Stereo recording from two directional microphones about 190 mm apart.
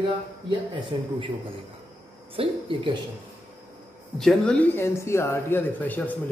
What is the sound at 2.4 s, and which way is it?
Speech, 30° right (ahead or behind).